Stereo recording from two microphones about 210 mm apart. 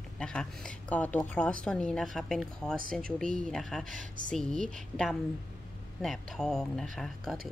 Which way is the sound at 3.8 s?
40° right (ahead or behind).